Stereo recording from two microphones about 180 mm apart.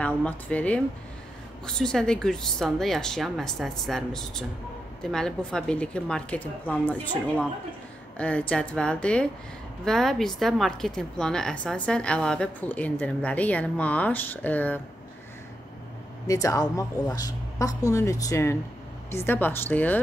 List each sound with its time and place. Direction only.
0.0 s a woman's voice: 5° left (ahead or behind)
16.3 s speech: 20° left (ahead or behind)